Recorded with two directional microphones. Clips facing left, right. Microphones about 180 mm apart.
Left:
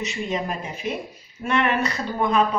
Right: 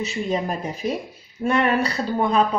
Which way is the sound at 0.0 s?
35° right (ahead or behind).